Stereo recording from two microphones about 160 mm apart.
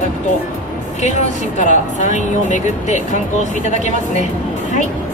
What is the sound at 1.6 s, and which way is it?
A woman's voice, 50° left (ahead or behind).